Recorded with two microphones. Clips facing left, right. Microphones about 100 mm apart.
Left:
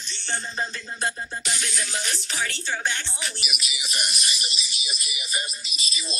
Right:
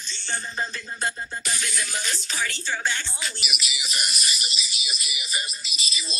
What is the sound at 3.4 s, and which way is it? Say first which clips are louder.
Speech: right 1 dB; 40° left (ahead or behind).